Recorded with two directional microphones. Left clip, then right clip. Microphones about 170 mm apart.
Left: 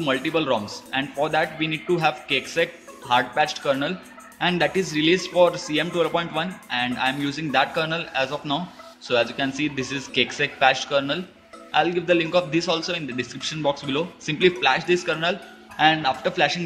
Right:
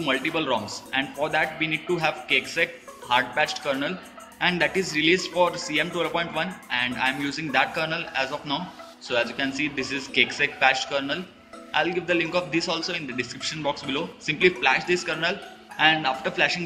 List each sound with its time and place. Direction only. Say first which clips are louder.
0.0 s a man's voice: left 2 dB; 40° left (ahead or behind)